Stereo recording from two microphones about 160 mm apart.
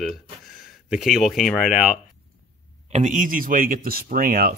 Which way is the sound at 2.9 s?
50° right (ahead or behind).